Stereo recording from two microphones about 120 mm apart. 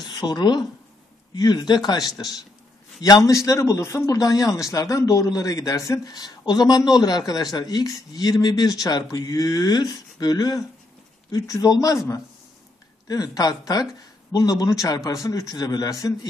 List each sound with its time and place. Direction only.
0.0 s speech: 35° left (ahead or behind)